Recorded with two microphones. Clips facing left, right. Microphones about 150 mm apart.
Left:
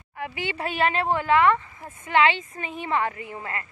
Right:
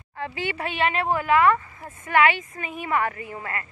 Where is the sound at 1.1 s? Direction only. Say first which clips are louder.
Right 1 dB; 25° left (ahead or behind).